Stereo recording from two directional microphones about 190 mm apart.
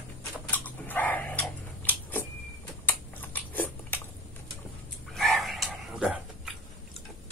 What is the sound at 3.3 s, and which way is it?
Biting, 10° left (ahead or behind).